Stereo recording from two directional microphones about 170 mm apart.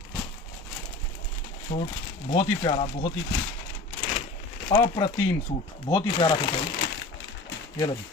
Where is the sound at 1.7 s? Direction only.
45° left (ahead or behind).